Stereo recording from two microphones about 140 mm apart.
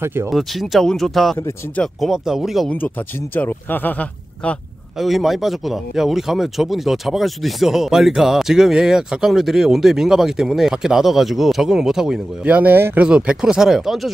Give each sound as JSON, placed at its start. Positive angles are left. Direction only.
{"t": 0.0, "sound": "speech", "side_deg": -15}
{"t": 0.3, "sound": "a man's voice", "side_deg": 0}
{"t": 3.3, "sound": "speech", "side_deg": 15}
{"t": 4.9, "sound": "a man's voice", "side_deg": 0}